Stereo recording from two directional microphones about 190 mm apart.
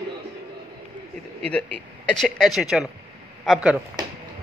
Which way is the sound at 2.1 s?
Centre (ahead or behind).